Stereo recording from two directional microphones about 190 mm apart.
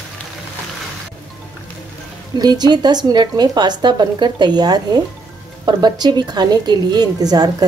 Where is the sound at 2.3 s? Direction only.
20° right (ahead or behind).